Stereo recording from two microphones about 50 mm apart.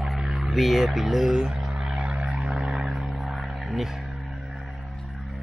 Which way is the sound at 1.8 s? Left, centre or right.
Right.